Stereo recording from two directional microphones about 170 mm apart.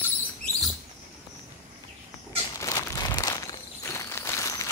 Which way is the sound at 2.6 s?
20° left (ahead or behind).